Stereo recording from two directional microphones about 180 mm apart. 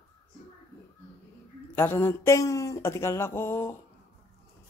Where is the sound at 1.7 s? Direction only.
10° left (ahead or behind).